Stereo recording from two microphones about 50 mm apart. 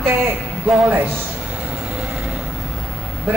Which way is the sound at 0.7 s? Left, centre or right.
Right.